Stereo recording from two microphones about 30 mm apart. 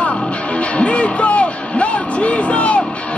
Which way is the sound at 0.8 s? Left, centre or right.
Left.